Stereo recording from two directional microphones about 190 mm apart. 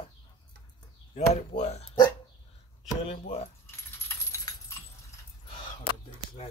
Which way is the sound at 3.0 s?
35° left (ahead or behind).